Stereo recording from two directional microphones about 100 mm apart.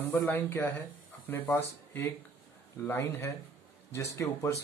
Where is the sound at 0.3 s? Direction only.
20° left (ahead or behind).